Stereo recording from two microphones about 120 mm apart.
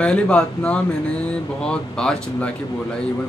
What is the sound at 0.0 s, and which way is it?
Speech, 10° left (ahead or behind).